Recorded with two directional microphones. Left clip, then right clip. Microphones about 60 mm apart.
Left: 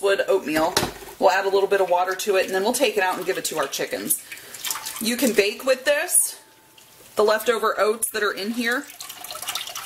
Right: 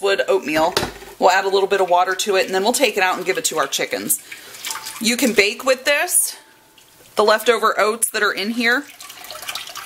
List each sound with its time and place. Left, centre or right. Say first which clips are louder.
0.0 s a sound: right 3 dB; right
1.2 s speech: right 3 dB; right
5.0 s speech: right 4 dB; right
7.2 s speech: right 4 dB; right
9.3 s water: right 1 dB; centre